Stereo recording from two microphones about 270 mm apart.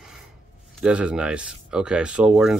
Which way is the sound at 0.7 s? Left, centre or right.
Centre.